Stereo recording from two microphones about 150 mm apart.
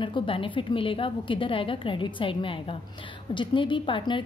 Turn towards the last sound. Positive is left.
turn(degrees=35)  # may be behind; listen again after turning